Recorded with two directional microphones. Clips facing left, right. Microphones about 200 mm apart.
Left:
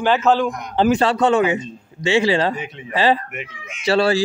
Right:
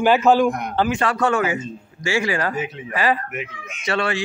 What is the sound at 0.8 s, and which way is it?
Speech, 35° left (ahead or behind).